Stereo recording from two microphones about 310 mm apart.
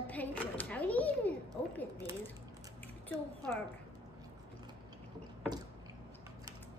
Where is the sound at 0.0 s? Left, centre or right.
Centre.